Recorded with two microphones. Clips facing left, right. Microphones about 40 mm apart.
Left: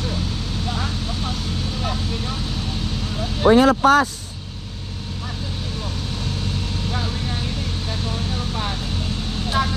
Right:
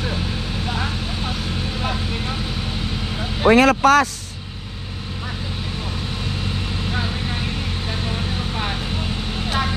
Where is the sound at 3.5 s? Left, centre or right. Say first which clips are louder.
Right 1 dB; right.